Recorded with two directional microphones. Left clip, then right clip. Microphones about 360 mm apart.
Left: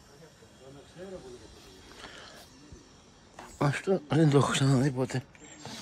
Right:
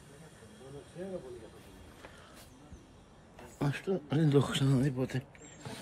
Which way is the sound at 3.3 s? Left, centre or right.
Centre.